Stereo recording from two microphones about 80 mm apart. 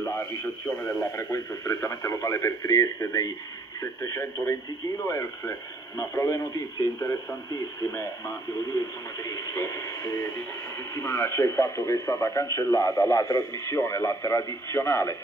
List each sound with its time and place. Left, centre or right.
0.0 s speech: left